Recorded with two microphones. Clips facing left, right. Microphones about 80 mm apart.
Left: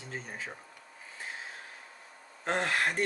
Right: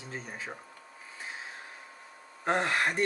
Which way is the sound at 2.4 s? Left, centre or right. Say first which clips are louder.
Right 2 dB; centre.